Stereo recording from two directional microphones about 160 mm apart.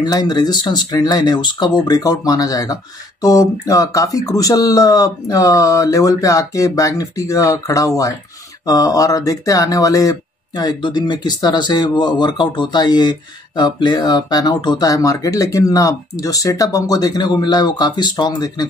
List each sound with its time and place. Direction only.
0.0 s speech: 25° left (ahead or behind)